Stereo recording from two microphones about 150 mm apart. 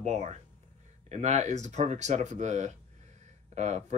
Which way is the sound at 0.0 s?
50° right (ahead or behind).